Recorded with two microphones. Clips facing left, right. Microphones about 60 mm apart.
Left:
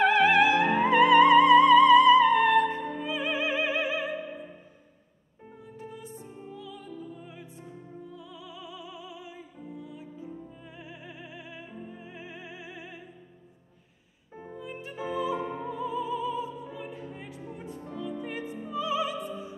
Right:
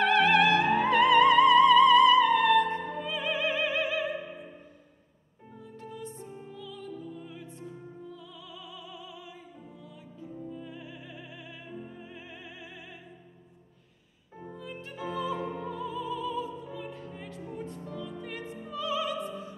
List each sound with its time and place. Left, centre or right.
0.1 s music: centre
3.8 s opera: centre
5.8 s music: centre
14.3 s music: centre